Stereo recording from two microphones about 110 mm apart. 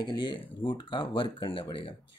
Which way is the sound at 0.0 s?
45° left (ahead or behind).